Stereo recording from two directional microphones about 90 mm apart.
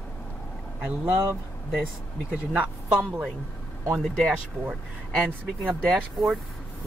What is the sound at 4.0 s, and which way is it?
Speech, 10° left (ahead or behind).